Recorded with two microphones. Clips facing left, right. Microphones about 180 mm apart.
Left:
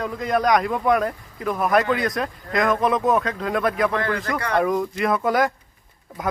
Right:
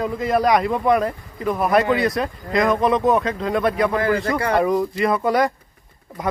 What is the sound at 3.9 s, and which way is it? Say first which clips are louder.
Speech: right 4 dB; 20° right (ahead or behind).